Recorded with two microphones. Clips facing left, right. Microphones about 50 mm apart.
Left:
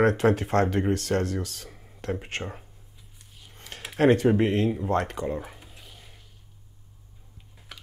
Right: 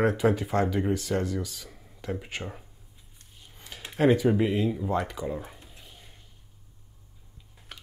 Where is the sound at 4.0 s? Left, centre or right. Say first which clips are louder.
Left 2 dB; left.